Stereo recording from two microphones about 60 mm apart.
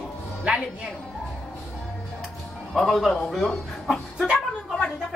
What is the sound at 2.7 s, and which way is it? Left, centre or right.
A man's voice, centre.